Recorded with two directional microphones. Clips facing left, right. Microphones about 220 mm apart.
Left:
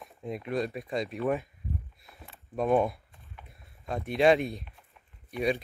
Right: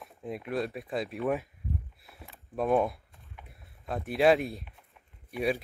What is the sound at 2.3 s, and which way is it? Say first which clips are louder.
Speech: left 1 dB; centre (ahead or behind).